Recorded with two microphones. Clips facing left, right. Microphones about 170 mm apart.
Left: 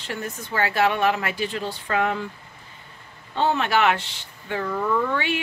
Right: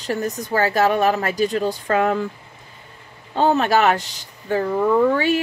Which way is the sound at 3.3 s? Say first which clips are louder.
Right 5 dB; 40° right (ahead or behind).